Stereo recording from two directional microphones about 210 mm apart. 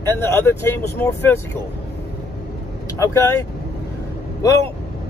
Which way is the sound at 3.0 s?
15° left (ahead or behind).